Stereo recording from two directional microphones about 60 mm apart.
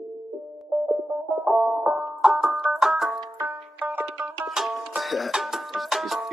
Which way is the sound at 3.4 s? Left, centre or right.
Right.